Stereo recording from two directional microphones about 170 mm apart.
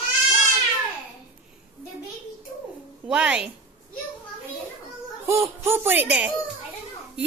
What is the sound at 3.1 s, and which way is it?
Speech, 5° right (ahead or behind).